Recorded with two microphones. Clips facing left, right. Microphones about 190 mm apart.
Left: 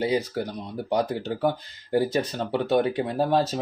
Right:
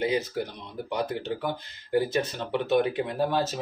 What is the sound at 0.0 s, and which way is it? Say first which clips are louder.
Speech: left 2 dB; 35° left (ahead or behind).